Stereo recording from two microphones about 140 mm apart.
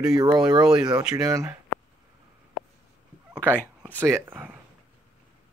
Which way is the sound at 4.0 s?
15° right (ahead or behind).